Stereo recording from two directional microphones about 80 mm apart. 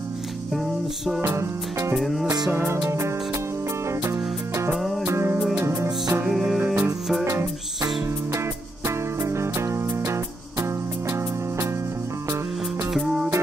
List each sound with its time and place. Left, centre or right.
0.5 s music: centre
1.2 s music: right
2.0 s music: centre
2.5 s music: right
4.7 s music: centre
5.0 s music: right
6.2 s music: centre
6.6 s music: right
7.2 s music: right
12.9 s music: centre